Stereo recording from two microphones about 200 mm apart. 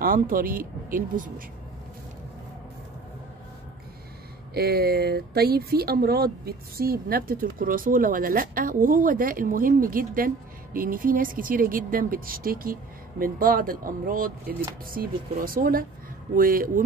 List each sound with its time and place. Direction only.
0.0 s speech: 45° right (ahead or behind)
4.6 s speech: 50° right (ahead or behind)